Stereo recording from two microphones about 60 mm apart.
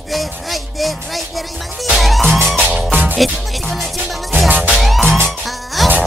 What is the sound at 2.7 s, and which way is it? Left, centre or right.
Music, right.